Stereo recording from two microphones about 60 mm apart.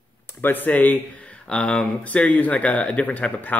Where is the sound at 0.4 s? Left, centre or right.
Left.